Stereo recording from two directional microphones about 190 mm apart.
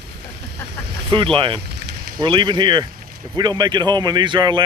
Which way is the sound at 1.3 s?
25° right (ahead or behind).